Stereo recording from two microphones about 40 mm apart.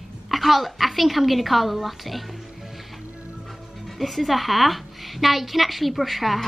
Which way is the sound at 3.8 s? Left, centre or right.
Centre.